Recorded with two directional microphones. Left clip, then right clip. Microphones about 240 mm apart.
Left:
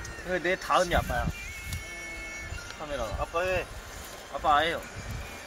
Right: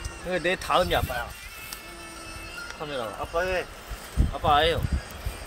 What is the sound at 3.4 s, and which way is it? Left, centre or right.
Speech, centre.